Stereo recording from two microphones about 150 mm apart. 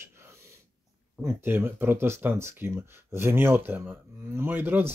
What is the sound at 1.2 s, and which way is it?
Speech, 15° right (ahead or behind).